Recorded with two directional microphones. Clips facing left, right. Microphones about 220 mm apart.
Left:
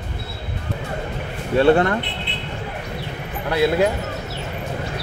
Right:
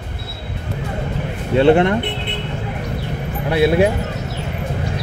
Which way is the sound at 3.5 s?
25° right (ahead or behind).